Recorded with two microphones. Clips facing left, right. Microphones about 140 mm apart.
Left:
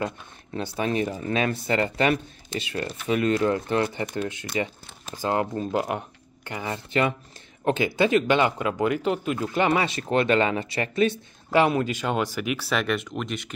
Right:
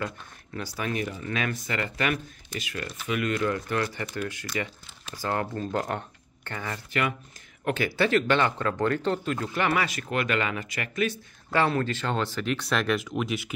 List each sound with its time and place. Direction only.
0.6 s speech: 25° left (ahead or behind)
11.5 s speech: 15° left (ahead or behind); by 13.6 s 5° right (ahead or behind)